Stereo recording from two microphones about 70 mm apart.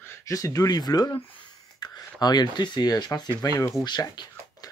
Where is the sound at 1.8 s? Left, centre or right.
Left.